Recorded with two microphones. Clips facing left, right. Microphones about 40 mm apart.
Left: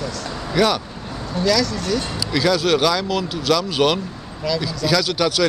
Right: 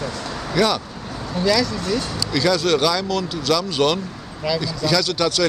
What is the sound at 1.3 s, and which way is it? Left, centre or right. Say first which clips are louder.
Speech: even; centre.